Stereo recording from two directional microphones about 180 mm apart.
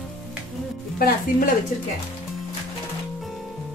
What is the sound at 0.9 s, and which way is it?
Speech, 55° left (ahead or behind).